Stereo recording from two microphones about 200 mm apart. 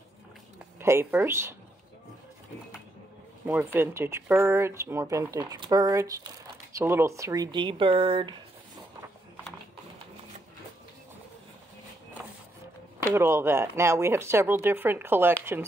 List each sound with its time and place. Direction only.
0.7 s speech: 10° right (ahead or behind)
3.4 s speech: 10° right (ahead or behind)
13.1 s speech: 10° right (ahead or behind)